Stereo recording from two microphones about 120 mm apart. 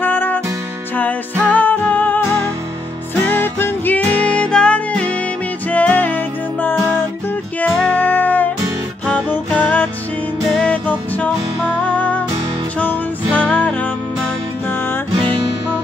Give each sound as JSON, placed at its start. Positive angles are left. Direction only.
{"t": 0.0, "sound": "music", "side_deg": 15}
{"t": 3.3, "sound": "music", "side_deg": 20}
{"t": 8.0, "sound": "music", "side_deg": 15}